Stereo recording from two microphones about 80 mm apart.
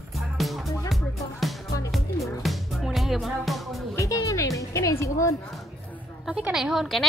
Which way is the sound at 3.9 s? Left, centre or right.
Left.